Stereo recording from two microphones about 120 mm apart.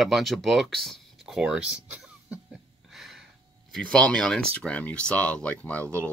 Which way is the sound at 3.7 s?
5° left (ahead or behind).